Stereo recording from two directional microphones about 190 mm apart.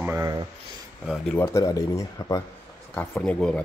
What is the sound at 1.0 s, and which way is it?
Speech, centre (ahead or behind).